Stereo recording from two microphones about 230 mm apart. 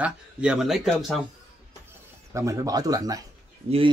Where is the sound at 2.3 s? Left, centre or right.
Centre.